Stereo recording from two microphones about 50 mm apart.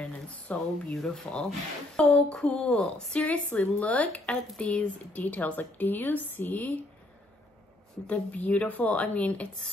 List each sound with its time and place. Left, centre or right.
0.0 s a sound: left
0.9 s a woman's voice: centre; by 6.8 s left
8.1 s speech: left